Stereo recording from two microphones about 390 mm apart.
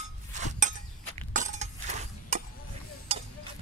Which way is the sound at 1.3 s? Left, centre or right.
Centre.